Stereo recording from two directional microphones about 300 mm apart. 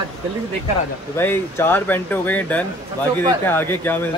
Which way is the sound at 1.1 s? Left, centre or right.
Centre.